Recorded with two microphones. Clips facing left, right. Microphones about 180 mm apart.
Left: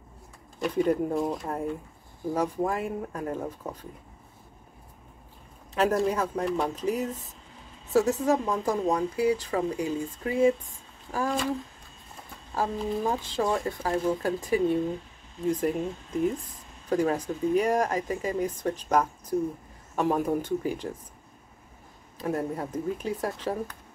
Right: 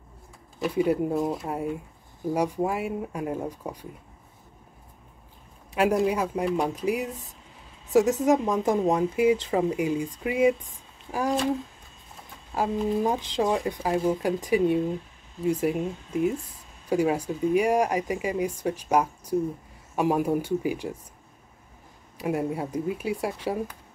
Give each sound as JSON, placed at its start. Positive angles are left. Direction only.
{"t": 0.6, "sound": "speech", "side_deg": -5}
{"t": 5.8, "sound": "speech", "side_deg": -10}
{"t": 8.2, "sound": "speech", "side_deg": -20}
{"t": 12.5, "sound": "speech", "side_deg": -15}
{"t": 22.2, "sound": "speech", "side_deg": -10}